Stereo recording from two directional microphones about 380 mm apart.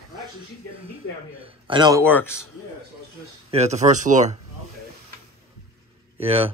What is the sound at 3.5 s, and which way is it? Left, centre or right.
Speech, centre.